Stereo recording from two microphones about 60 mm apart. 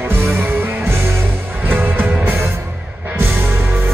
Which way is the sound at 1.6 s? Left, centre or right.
Right.